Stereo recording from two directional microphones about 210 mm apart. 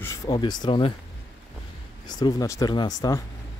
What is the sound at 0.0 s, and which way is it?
Speech, 20° left (ahead or behind).